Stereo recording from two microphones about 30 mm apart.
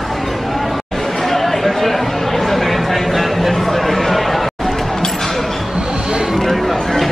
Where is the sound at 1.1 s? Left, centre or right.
Centre.